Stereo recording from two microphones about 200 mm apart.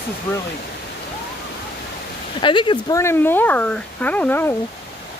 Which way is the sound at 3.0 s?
10° left (ahead or behind).